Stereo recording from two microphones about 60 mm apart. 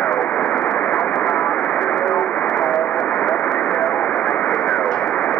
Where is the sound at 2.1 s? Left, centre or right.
Left.